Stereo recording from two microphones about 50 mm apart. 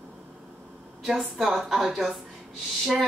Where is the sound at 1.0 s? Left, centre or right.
Centre.